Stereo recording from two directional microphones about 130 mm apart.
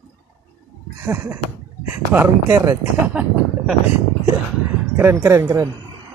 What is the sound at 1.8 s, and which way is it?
Speech, 20° right (ahead or behind).